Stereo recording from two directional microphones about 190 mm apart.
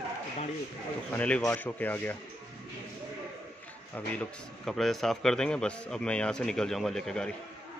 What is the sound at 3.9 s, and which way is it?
A man's voice, 5° left (ahead or behind).